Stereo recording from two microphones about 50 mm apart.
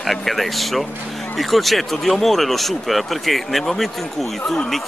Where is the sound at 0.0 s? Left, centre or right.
Centre.